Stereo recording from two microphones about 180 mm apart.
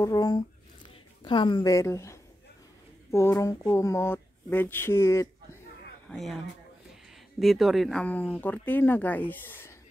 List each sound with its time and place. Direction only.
0.0 s a woman's voice: 20° left (ahead or behind)
6.0 s speech: centre (ahead or behind)
7.3 s speech: centre (ahead or behind)